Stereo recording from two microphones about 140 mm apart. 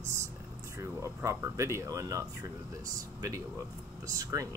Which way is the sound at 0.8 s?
20° right (ahead or behind).